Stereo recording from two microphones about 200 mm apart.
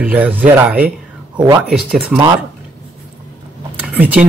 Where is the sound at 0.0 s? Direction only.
10° right (ahead or behind).